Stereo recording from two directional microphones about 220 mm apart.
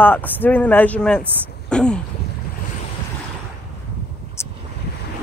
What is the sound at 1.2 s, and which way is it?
Speech, 10° right (ahead or behind).